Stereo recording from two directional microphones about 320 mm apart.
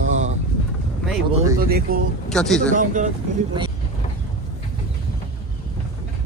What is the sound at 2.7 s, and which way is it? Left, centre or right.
Speech, right.